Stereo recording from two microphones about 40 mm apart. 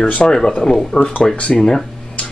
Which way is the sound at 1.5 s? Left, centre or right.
Centre.